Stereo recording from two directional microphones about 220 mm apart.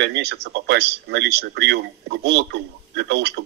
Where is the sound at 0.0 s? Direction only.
50° right (ahead or behind).